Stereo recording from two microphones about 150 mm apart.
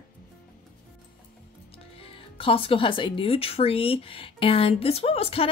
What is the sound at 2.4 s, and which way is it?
Speech, 35° left (ahead or behind).